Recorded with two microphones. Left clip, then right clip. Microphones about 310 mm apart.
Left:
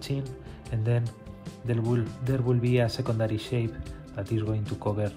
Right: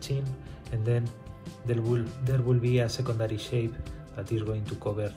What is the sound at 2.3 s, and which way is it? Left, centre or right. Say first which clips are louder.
Speech: left 1 dB; left.